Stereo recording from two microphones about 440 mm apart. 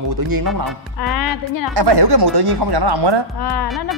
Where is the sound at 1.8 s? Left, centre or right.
Right.